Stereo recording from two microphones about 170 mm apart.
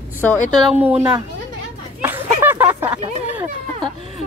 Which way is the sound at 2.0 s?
10° right (ahead or behind).